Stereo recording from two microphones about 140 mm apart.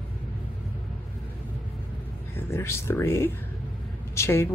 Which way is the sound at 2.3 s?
15° left (ahead or behind).